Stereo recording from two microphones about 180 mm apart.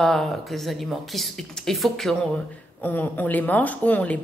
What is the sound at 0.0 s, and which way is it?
Speech, centre (ahead or behind).